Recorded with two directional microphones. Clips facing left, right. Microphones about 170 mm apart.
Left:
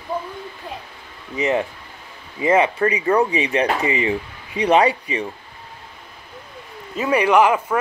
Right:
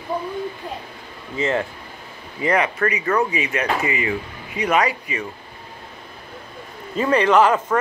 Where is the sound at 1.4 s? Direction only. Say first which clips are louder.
Left 2 dB; 15° left (ahead or behind).